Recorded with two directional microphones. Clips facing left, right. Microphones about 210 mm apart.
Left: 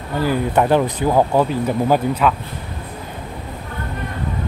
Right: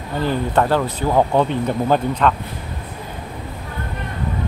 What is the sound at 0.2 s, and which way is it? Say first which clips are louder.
Speech: left 1 dB; 10° left (ahead or behind).